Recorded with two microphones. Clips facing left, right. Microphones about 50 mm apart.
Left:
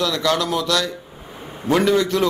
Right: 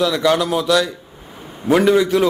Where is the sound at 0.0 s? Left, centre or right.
Centre.